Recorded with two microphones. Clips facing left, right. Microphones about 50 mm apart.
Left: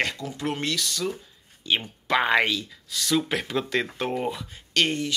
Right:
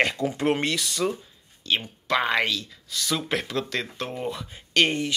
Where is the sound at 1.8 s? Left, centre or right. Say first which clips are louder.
Left 2 dB; left.